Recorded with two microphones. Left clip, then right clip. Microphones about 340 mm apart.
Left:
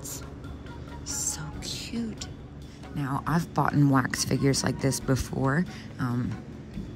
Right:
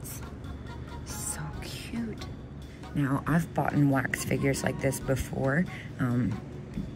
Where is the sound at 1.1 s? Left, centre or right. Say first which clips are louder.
Left 6 dB; centre.